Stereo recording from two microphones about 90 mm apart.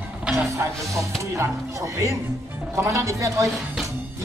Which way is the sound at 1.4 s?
30° right (ahead or behind).